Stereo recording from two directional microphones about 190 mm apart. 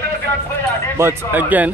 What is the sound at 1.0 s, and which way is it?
Speech, 10° right (ahead or behind).